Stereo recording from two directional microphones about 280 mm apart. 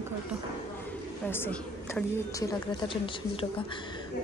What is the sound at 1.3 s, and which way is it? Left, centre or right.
A woman's voice, centre.